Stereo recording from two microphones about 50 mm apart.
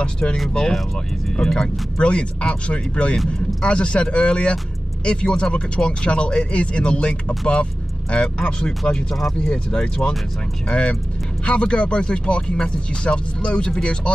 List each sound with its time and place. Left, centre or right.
0.0 s speech: centre
2.0 s speech: left
9.1 s speech: centre